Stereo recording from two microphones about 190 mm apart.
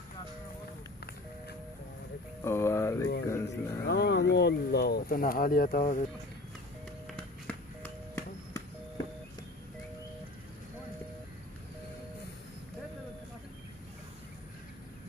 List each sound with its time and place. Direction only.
2.4 s a sound: 15° left (ahead or behind)
3.3 s speech: 15° left (ahead or behind)
3.8 s speech: 55° left (ahead or behind)
7.4 s music: 10° left (ahead or behind)